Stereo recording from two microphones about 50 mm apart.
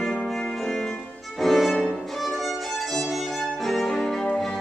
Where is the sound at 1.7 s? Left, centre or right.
Centre.